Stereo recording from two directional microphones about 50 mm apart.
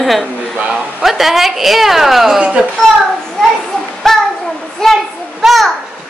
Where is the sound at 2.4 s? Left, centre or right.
Centre.